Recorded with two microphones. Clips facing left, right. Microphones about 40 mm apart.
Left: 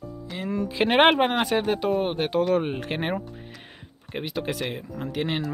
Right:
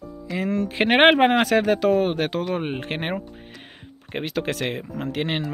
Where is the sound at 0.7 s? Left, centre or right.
Right.